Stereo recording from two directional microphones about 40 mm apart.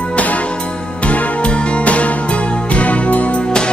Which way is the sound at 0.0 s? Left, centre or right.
Left.